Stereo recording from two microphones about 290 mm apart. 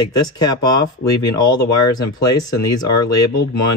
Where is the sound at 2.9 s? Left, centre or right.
Left.